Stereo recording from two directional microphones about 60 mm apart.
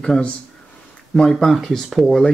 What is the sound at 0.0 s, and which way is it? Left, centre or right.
Speech, centre.